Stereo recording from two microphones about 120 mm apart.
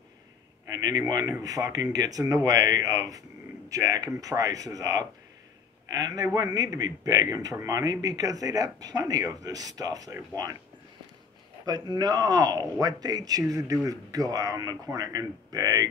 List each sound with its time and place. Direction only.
0.7 s a man's voice: 30° right (ahead or behind)
11.6 s a man's voice: 35° right (ahead or behind)